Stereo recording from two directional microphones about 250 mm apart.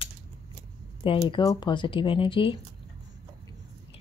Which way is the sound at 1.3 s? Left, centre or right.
Centre.